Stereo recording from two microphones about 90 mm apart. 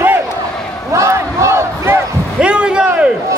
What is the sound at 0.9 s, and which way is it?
Battle cry, 35° right (ahead or behind).